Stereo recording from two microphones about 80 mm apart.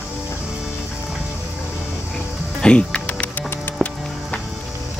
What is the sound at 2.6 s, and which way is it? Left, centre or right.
Music, centre.